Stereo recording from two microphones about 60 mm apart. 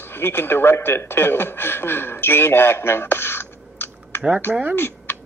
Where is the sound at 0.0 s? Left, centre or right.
Left.